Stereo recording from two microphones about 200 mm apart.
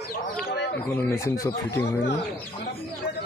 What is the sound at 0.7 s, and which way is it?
Speech, 5° left (ahead or behind).